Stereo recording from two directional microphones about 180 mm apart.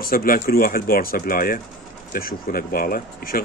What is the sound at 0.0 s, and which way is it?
A man's voice, 55° left (ahead or behind).